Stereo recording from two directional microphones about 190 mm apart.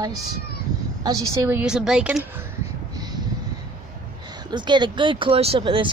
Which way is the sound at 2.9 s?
20° right (ahead or behind).